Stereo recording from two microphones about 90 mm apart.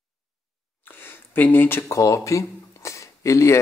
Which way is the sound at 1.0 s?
25° left (ahead or behind).